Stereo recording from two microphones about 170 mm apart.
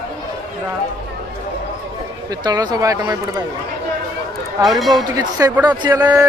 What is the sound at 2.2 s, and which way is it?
Speech, 25° right (ahead or behind).